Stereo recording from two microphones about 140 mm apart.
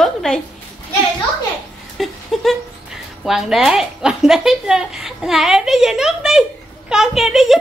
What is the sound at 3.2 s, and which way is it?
A woman's voice, 5° right (ahead or behind).